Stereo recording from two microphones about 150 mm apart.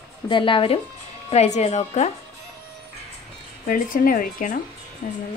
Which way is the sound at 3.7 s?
70° left (ahead or behind).